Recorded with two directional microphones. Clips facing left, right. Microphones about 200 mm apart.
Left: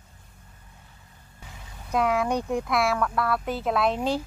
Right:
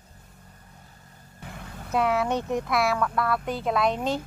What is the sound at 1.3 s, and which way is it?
Vehicle, 60° right (ahead or behind).